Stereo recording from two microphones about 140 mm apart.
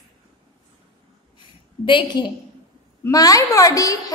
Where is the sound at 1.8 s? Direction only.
35° left (ahead or behind).